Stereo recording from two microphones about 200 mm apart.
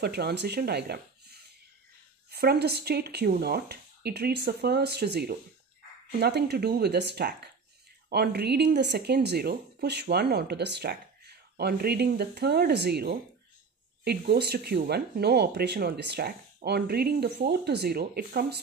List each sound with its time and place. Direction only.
0.0 s speech: 55° right (ahead or behind)